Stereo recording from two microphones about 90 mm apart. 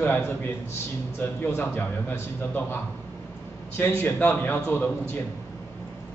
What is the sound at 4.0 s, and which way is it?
Speech, 20° left (ahead or behind).